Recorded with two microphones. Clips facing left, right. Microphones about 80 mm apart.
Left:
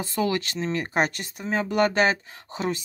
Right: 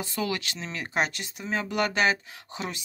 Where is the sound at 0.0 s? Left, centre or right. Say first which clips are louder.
Left 5 dB; left.